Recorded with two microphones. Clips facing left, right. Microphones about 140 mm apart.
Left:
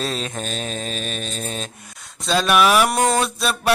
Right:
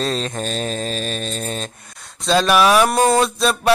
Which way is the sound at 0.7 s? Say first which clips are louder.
Right 4 dB; 35° right (ahead or behind).